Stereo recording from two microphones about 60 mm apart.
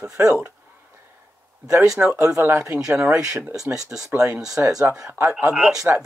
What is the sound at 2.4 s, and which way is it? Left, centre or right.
Speech, right.